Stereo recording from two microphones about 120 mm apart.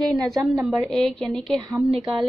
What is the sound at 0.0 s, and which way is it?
A woman's voice, centre (ahead or behind).